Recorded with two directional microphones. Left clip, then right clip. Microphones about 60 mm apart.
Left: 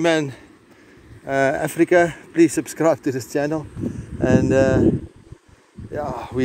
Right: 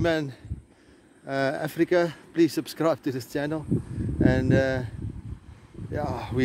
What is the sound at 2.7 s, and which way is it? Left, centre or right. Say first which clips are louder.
Speech: left 7 dB; centre.